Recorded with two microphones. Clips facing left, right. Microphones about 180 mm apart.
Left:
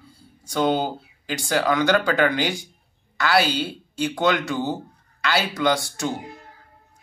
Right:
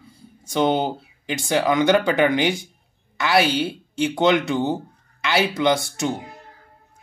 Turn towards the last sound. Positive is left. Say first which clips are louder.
# right 2 dB
turn(degrees=-20)  # may be behind; listen again after turning